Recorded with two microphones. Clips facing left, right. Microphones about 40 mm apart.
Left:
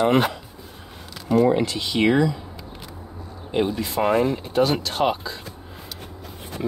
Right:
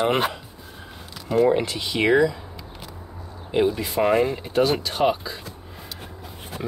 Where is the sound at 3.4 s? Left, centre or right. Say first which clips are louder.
Right 2 dB; centre.